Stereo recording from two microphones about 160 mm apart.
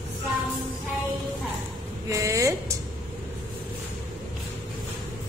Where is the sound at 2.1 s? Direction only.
20° right (ahead or behind).